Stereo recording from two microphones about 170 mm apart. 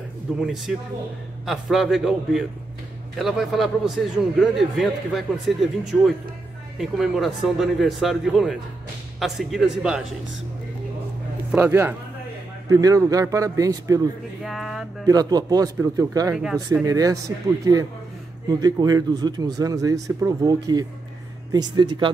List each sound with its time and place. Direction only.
0.4 s a man's voice: centre (ahead or behind)
11.5 s speech: 10° right (ahead or behind)
14.4 s a sound: centre (ahead or behind)
15.0 s speech: 20° right (ahead or behind)
18.6 s speech: 20° right (ahead or behind)